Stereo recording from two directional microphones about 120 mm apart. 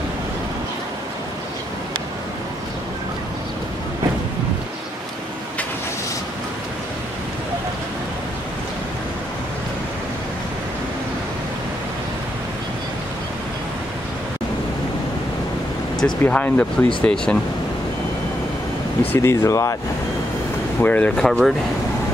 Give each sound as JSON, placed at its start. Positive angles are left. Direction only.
{"t": 16.0, "sound": "speech", "side_deg": 10}
{"t": 19.1, "sound": "speech", "side_deg": 25}
{"t": 20.8, "sound": "speech", "side_deg": 10}
{"t": 21.2, "sound": "speech", "side_deg": 0}